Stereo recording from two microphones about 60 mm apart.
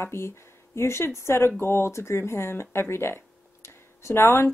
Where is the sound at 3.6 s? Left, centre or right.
Left.